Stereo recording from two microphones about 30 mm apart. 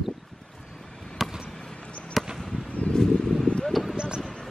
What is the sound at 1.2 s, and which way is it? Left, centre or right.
Basketball bounce, centre.